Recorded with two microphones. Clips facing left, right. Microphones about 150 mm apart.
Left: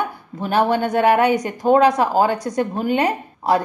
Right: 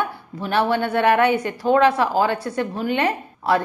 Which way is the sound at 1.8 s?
40° left (ahead or behind).